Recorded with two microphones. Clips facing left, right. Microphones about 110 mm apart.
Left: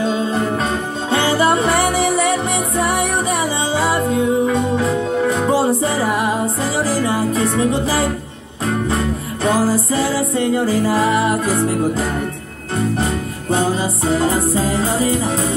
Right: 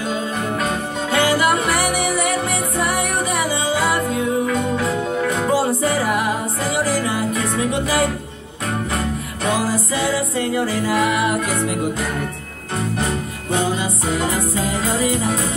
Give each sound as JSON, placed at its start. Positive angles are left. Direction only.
{"t": 0.0, "sound": "music", "side_deg": 30}
{"t": 13.5, "sound": "music", "side_deg": 35}